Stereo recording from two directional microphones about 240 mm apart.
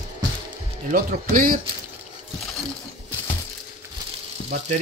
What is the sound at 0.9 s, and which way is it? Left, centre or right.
Speech, right.